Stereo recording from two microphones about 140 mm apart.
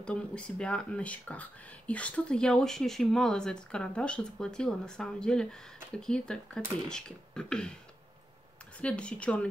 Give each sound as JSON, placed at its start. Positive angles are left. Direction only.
{"t": 0.0, "sound": "speech", "side_deg": 5}
{"t": 8.7, "sound": "speech", "side_deg": 10}